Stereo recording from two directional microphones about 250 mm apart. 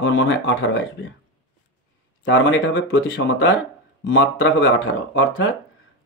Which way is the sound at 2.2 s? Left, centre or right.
Left.